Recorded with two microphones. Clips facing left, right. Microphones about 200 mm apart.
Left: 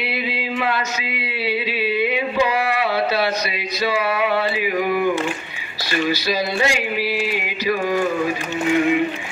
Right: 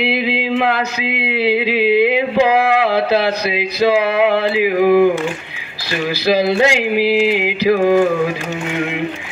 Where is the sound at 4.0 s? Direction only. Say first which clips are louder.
Right 6 dB; 60° right (ahead or behind).